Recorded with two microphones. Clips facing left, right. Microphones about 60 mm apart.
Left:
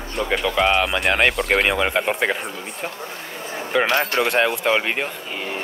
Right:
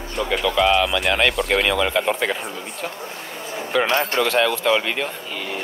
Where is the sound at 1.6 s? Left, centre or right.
Left.